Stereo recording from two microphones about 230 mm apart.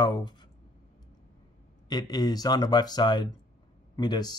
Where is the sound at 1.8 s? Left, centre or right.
Centre.